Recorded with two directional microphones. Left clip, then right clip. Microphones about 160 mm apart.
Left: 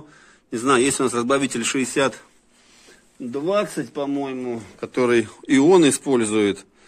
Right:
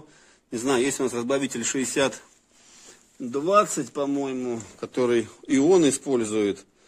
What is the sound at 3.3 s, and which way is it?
Speech, 50° right (ahead or behind).